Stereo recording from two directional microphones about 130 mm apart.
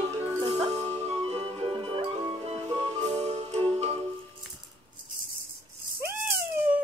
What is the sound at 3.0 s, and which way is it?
Music, 60° right (ahead or behind).